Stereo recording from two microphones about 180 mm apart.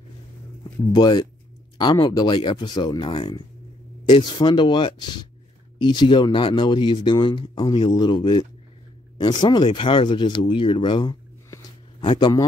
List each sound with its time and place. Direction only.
0.9 s speech: 25° left (ahead or behind)